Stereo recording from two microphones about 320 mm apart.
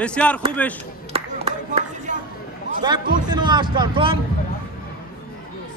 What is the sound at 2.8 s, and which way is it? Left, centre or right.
A man's voice, centre.